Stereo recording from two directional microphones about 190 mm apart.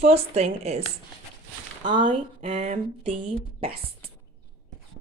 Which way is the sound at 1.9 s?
25° right (ahead or behind).